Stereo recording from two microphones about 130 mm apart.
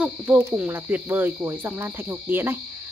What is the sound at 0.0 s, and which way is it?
Speech, 15° right (ahead or behind).